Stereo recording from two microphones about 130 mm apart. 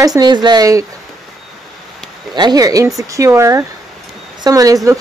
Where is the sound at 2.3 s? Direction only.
35° right (ahead or behind).